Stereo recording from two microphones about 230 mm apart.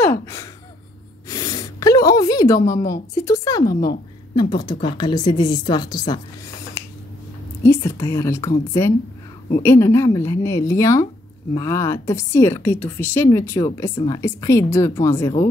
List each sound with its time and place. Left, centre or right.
0.0 s gasp: centre
1.3 s a sound: centre
3.6 s a woman's voice: left
4.4 s speech: centre
7.6 s a woman's voice: centre